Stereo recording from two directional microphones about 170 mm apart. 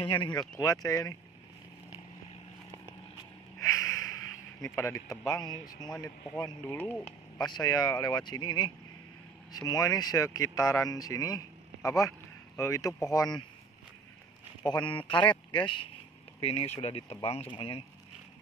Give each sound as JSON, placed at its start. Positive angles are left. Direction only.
{"t": 0.0, "sound": "speech", "side_deg": 30}
{"t": 3.5, "sound": "snort", "side_deg": 15}
{"t": 4.6, "sound": "speech", "side_deg": 15}
{"t": 6.8, "sound": "speech", "side_deg": 10}
{"t": 7.3, "sound": "speech", "side_deg": 25}
{"t": 14.7, "sound": "speech", "side_deg": 25}